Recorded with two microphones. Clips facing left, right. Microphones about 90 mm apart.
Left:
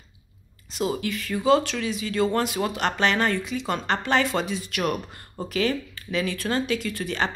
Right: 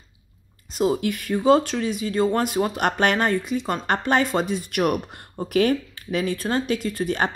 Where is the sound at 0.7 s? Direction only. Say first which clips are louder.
Right 5 dB; 45° right (ahead or behind).